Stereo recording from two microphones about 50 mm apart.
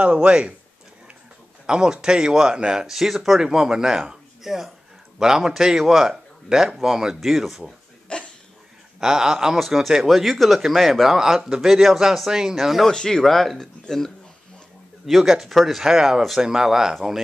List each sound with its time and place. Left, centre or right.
0.0 s speech: right
1.7 s speech: centre
8.1 s a sound: left
9.0 s speech: centre
12.8 s speech: centre
15.0 s speech: centre